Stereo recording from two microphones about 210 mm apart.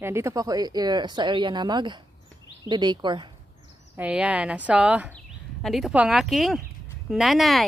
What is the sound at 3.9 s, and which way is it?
Speech, 5° right (ahead or behind).